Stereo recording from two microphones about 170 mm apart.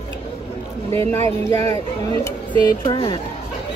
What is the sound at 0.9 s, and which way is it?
Speech, 40° right (ahead or behind).